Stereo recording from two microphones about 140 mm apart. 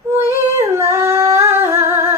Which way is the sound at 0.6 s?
20° right (ahead or behind).